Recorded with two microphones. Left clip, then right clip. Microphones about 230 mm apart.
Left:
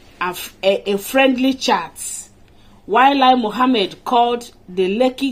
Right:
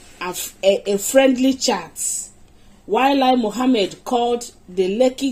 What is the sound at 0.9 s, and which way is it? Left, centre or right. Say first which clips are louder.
Speech: even; left.